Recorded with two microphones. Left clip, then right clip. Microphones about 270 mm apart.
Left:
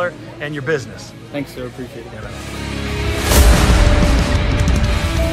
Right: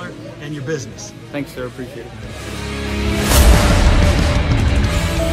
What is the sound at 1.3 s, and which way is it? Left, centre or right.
Speech, centre.